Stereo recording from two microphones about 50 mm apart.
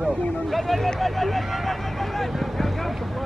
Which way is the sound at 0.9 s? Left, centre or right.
Centre.